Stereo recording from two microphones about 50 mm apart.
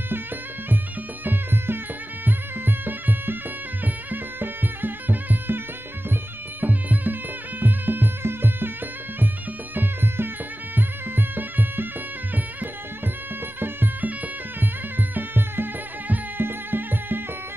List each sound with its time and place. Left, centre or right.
1.2 s music: right
6.6 s music: right
9.8 s music: right
13.6 s music: right